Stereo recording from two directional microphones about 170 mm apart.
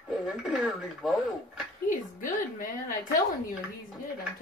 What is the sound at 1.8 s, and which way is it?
A woman's voice, 50° left (ahead or behind).